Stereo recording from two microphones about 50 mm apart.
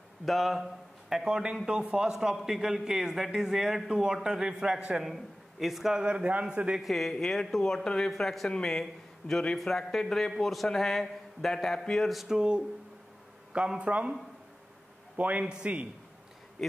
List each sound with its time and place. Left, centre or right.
0.2 s a man's voice: centre
5.9 s a man's voice: right
6.8 s a man's voice: centre
9.3 s a man's voice: centre
12.1 s a man's voice: centre
12.4 s a man's voice: centre
15.1 s a man's voice: right
15.4 s a man's voice: centre